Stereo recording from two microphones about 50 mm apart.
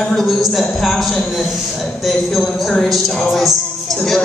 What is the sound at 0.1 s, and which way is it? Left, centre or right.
A man's voice, centre.